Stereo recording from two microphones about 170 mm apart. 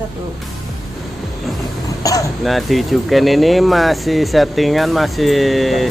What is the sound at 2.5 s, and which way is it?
Speech, centre (ahead or behind).